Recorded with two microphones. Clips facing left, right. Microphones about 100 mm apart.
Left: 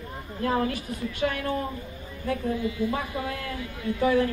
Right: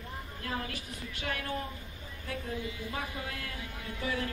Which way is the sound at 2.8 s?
55° left (ahead or behind).